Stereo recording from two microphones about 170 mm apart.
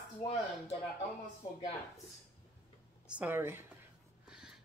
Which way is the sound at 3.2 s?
10° right (ahead or behind).